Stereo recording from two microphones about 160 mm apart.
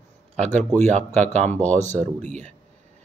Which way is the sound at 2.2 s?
45° right (ahead or behind).